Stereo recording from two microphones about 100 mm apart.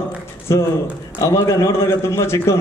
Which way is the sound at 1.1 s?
25° left (ahead or behind).